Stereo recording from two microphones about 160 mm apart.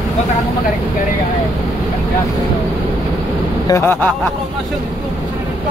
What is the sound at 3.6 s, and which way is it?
Vehicle, 15° left (ahead or behind).